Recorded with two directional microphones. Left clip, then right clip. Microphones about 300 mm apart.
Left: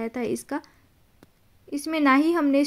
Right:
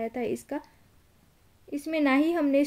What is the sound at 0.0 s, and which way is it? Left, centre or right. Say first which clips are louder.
Speech: left 2 dB; centre.